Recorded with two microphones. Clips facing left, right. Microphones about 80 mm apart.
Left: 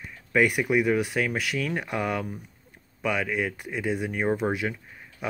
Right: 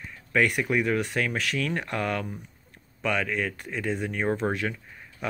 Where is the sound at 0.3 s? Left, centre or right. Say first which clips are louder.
Left 2 dB; centre.